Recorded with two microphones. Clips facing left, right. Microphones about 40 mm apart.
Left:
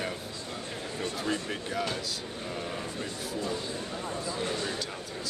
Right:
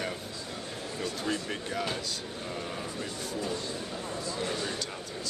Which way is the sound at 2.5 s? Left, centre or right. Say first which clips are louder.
Left 1 dB; centre.